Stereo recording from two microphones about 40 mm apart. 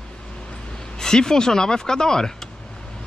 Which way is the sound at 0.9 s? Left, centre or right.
Centre.